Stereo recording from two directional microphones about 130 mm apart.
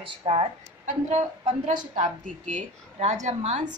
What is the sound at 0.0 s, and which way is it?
A woman's voice, 45° right (ahead or behind).